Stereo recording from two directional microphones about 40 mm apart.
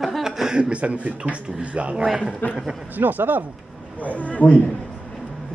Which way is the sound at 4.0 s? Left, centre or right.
Left.